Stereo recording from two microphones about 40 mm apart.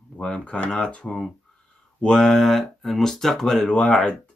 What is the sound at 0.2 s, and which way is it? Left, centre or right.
Mantra, left.